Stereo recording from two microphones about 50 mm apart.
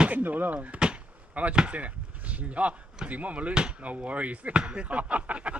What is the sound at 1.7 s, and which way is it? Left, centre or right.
Speech, right.